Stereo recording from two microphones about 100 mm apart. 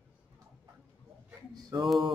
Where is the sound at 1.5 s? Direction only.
45° right (ahead or behind).